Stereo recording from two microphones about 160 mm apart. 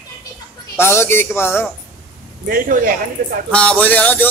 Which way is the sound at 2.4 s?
65° right (ahead or behind).